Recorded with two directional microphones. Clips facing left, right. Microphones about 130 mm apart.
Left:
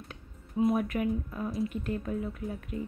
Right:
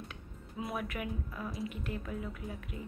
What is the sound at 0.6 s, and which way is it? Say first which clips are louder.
A woman's voice: left 11 dB; 25° left (ahead or behind).